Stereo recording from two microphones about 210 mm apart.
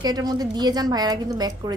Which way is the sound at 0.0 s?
20° right (ahead or behind).